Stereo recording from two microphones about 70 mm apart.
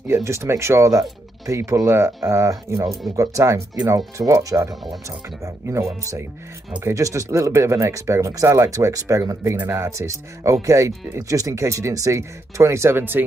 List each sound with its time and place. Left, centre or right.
0.1 s speech: right
1.9 s speech: right
5.4 s speech: right